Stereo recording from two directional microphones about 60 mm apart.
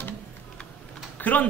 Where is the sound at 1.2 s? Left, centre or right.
Left.